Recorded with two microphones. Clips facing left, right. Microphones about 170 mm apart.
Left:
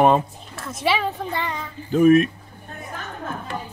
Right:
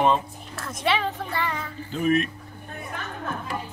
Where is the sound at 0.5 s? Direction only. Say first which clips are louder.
Left 2 dB; centre (ahead or behind).